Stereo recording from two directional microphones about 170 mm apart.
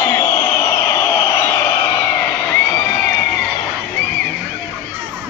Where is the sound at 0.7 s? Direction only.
15° left (ahead or behind).